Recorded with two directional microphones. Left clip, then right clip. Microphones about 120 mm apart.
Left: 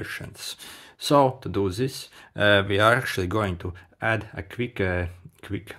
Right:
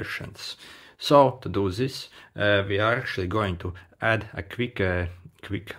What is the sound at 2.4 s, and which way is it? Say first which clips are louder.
Speech: left 3 dB; 40° left (ahead or behind).